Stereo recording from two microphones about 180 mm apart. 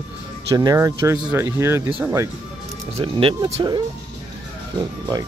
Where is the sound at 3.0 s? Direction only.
25° right (ahead or behind).